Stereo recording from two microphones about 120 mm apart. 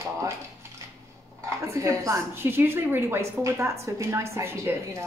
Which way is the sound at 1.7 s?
25° right (ahead or behind).